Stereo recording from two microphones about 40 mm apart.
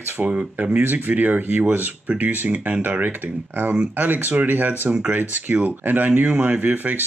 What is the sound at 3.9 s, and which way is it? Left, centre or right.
Speech, right.